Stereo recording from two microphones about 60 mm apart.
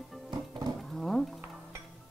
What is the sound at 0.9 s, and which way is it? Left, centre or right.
Wild animals, centre.